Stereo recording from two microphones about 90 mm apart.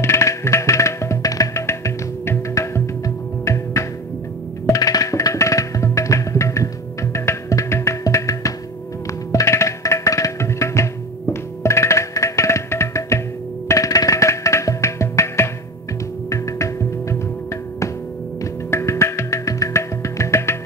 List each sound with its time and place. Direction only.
0.0 s music: 30° left (ahead or behind)